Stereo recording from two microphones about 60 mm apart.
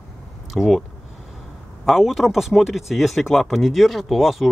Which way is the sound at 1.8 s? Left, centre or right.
Centre.